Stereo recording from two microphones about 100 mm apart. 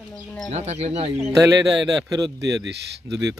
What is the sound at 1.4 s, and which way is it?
Speech, 35° right (ahead or behind).